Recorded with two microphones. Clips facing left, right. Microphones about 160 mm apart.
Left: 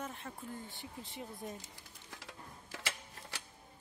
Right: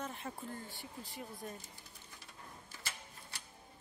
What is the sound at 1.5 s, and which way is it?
Sewing machine, 90° left.